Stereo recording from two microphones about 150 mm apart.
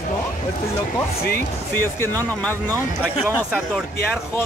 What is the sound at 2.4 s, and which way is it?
Speech, 10° left (ahead or behind).